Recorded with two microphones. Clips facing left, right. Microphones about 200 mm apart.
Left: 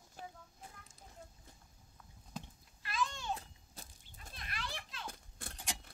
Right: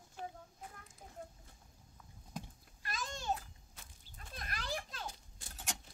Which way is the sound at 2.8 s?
40° right (ahead or behind).